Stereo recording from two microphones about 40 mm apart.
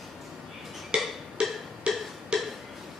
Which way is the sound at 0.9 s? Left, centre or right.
Right.